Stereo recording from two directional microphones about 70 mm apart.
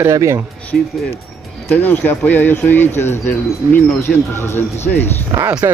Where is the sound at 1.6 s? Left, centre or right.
Left.